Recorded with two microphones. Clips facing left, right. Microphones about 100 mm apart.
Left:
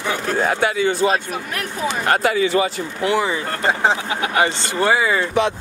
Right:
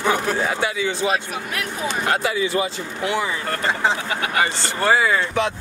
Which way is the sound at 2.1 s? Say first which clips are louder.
Left 5 dB; 60° left (ahead or behind).